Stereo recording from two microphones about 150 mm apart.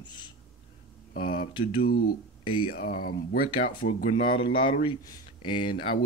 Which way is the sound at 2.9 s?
70° left (ahead or behind).